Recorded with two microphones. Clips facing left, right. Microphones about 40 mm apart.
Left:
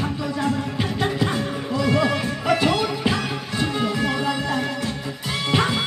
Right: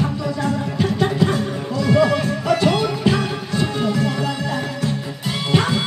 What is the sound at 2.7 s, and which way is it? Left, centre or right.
Music, centre.